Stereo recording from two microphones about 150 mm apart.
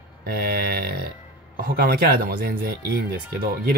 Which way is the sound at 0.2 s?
90° right.